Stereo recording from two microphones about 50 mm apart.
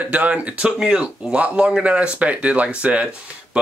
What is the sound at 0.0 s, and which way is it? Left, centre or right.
Speech, right.